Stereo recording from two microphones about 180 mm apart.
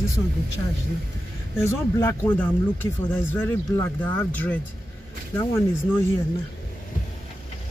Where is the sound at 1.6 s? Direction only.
15° left (ahead or behind).